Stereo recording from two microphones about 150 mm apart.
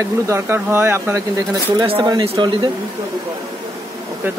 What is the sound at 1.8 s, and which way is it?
Speech, 30° right (ahead or behind).